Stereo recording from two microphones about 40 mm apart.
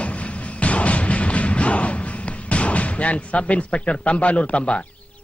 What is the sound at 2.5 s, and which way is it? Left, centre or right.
Speech, left.